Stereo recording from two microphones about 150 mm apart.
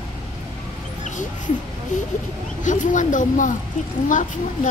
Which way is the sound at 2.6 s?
55° left (ahead or behind).